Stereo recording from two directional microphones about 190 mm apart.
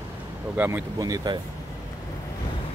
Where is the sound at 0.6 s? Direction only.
10° right (ahead or behind).